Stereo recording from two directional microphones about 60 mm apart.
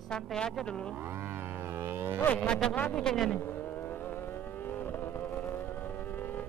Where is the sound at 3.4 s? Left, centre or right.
Left.